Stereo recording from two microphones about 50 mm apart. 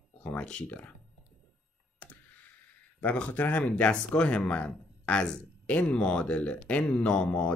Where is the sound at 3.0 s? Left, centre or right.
Left.